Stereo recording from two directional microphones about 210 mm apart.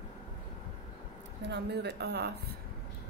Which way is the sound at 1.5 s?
55° right (ahead or behind).